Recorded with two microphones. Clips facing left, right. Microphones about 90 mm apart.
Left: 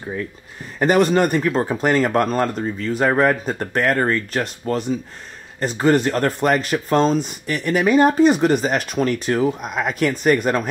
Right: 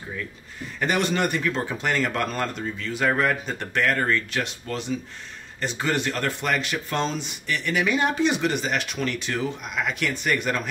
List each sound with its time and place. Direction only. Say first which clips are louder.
0.7 s speech: left 8 dB; 40° left (ahead or behind)